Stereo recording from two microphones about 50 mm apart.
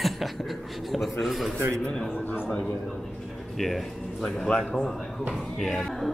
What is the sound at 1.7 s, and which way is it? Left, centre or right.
A man's voice, left.